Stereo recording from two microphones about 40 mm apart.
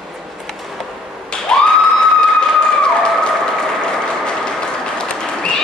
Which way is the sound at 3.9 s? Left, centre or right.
Left.